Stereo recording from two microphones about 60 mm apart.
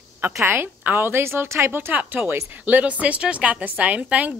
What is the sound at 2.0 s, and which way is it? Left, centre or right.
A woman's voice, right.